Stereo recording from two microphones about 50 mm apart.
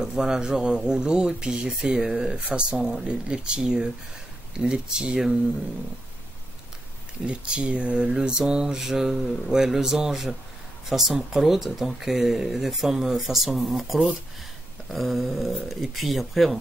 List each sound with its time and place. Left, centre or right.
0.0 s mantra: centre
2.8 s mantra: centre
7.2 s mantra: right
10.9 s speech: centre